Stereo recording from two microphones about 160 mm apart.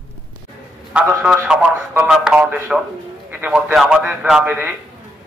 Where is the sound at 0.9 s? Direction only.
5° right (ahead or behind).